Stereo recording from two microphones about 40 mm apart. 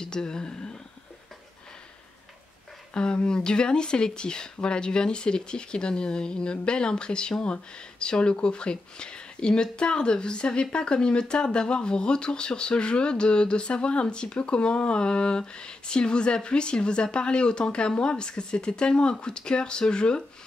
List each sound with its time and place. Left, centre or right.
0.0 s speech: centre
2.9 s speech: left